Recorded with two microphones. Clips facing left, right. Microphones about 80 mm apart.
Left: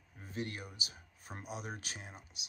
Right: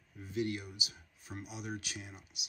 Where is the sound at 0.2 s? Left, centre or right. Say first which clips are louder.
Right 5 dB; left.